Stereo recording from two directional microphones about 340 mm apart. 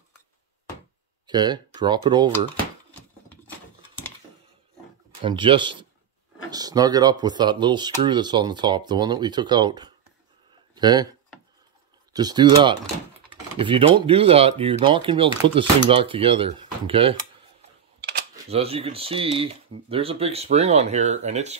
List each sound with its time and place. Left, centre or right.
1.2 s speech: centre
2.9 s a sound: centre
5.2 s speech: centre
12.1 s speech: centre
18.5 s speech: centre